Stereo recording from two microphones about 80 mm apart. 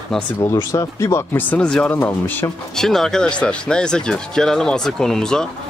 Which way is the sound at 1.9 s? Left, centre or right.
Left.